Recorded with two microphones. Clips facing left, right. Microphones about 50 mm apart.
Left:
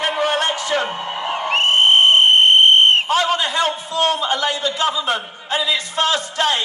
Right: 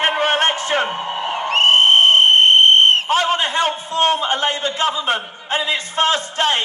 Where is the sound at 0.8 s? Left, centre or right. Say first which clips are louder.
Right 2 dB; right.